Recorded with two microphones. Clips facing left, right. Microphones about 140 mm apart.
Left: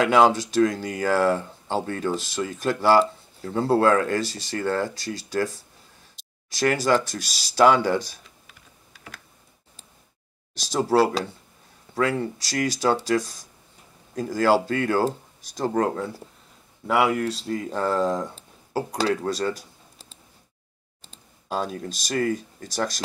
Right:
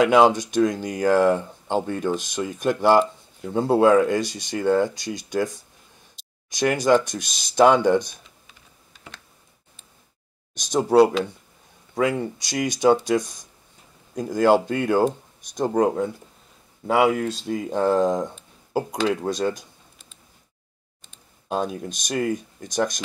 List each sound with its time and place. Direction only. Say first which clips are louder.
0.0 s speech: right 2 dB; 15° right (ahead or behind)
10.5 s speech: right 3 dB; 15° right (ahead or behind)
21.5 s speech: right 2 dB; 15° right (ahead or behind)